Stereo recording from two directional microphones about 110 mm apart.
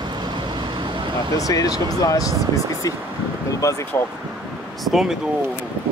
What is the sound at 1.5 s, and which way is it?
Speech, 30° left (ahead or behind).